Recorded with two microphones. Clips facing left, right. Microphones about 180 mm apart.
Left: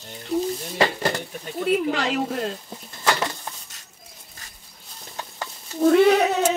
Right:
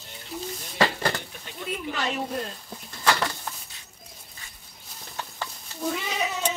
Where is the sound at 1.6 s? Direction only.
75° left (ahead or behind).